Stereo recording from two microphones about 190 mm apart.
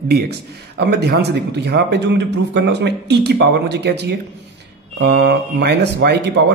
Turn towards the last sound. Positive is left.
turn(degrees=-60)  # may be behind; listen again after turning